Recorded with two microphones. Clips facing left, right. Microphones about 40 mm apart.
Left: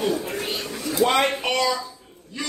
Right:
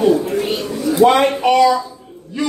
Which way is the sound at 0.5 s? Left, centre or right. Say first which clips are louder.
Right 9 dB; right.